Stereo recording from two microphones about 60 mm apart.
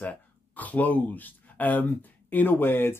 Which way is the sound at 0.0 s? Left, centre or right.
Left.